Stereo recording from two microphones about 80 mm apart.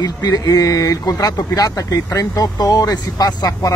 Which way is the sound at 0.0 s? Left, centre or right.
Left.